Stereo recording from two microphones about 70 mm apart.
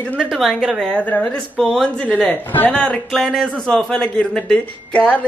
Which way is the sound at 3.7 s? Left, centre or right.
Centre.